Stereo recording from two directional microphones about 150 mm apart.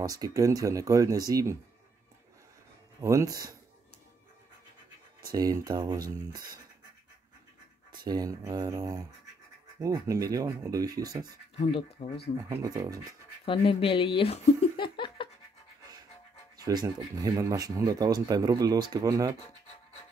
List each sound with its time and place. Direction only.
0.0 s speech: 25° right (ahead or behind)
3.0 s speech: 20° right (ahead or behind)
5.3 s speech: 25° right (ahead or behind)
7.9 s speech: 25° right (ahead or behind)
12.0 s speech: 45° left (ahead or behind)
12.4 s speech: 25° right (ahead or behind)
13.5 s speech: 35° left (ahead or behind)
16.5 s speech: 25° right (ahead or behind)